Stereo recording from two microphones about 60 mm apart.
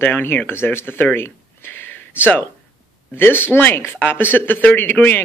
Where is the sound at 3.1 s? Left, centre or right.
Left.